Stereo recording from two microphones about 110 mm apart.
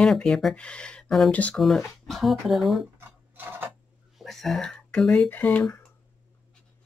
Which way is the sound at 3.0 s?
20° right (ahead or behind).